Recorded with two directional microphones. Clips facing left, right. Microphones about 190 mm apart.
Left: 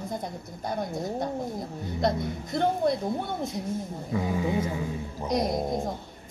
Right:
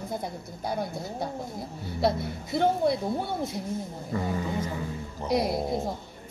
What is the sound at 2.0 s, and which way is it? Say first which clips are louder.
A woman's voice: right 1 dB; 5° right (ahead or behind).